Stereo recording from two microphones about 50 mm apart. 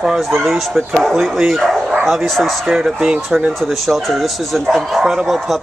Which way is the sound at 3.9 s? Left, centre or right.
Centre.